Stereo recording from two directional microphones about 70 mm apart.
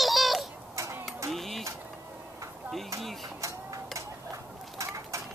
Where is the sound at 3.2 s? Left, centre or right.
Right.